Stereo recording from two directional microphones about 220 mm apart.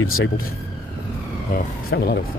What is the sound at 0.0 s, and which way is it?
Speech, 70° left (ahead or behind).